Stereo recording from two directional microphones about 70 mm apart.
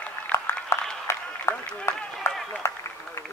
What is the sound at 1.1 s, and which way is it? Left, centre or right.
Applause, left.